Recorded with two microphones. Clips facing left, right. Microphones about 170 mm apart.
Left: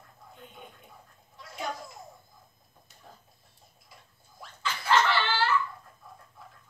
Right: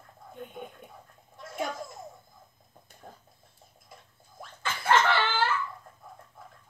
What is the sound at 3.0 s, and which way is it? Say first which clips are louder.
Chicken: right 4 dB; 45° right (ahead or behind).